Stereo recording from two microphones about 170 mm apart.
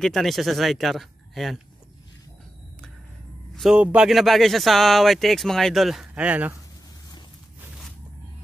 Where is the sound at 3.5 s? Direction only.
5° right (ahead or behind).